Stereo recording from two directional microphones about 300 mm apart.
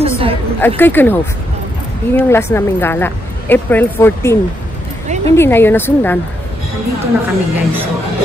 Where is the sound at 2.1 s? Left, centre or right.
Centre.